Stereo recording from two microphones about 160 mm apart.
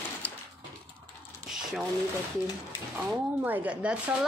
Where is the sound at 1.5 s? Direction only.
Centre (ahead or behind).